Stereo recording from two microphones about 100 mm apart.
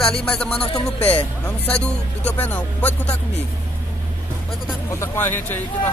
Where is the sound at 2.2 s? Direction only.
20° left (ahead or behind).